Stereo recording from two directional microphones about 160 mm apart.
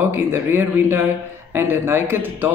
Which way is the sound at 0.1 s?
15° right (ahead or behind).